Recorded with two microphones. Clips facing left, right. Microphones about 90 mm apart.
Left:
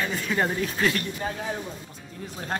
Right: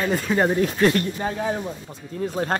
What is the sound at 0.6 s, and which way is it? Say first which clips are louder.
Speech: right 6 dB; 40° right (ahead or behind).